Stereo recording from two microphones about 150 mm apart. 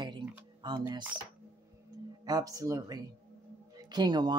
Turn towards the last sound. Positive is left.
turn(degrees=-30)  # may be behind; listen again after turning